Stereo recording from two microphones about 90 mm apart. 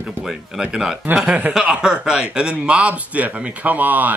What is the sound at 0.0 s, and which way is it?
Speech, 5° right (ahead or behind).